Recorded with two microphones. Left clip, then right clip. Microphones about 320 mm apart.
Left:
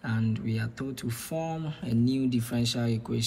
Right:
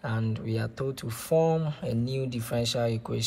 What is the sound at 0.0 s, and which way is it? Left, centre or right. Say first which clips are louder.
Speech: even; centre.